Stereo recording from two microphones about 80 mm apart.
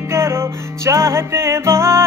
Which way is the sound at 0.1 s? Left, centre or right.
Right.